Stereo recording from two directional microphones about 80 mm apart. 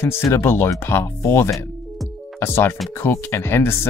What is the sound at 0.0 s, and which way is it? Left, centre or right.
Speech, left.